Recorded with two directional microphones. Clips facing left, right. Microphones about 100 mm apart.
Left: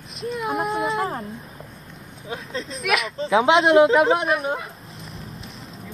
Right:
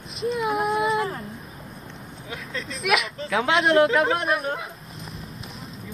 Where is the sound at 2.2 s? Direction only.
30° left (ahead or behind).